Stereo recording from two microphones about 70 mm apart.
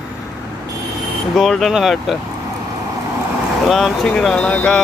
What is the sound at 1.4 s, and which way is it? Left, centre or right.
Speech, centre.